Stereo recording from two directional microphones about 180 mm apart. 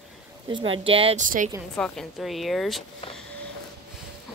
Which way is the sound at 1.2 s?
45° right (ahead or behind).